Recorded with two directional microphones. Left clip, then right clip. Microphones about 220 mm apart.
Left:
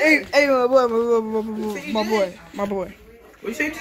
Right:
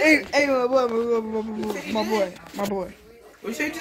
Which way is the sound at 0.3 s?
15° left (ahead or behind).